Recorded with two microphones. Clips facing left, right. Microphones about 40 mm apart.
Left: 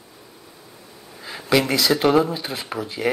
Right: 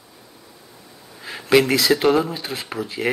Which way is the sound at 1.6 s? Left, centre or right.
Centre.